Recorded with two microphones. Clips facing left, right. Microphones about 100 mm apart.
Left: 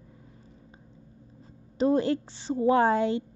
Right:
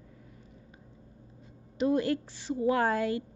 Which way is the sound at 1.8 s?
30° left (ahead or behind).